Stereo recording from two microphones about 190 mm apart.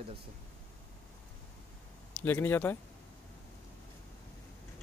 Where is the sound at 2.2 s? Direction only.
10° left (ahead or behind).